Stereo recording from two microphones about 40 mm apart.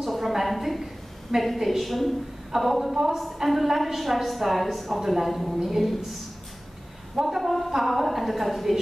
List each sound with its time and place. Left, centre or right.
0.0 s a woman's voice: centre
7.2 s a woman's voice: centre